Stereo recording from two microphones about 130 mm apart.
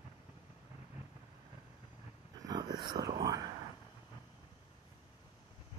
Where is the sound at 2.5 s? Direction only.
30° right (ahead or behind).